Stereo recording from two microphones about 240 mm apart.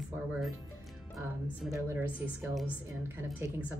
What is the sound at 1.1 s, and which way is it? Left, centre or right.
Speech, centre.